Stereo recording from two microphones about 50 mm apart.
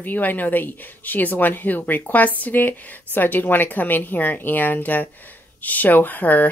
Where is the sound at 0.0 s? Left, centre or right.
Left.